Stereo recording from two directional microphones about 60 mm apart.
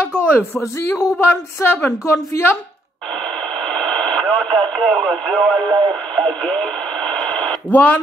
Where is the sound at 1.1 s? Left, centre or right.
Left.